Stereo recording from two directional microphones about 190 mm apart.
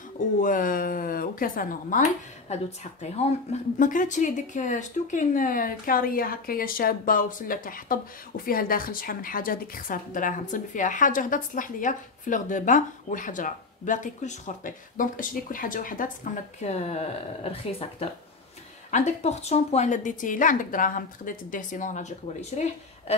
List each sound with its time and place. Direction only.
0.4 s speech: 45° left (ahead or behind)